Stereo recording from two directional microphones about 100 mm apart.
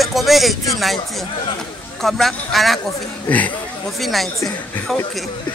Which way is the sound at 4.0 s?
Centre (ahead or behind).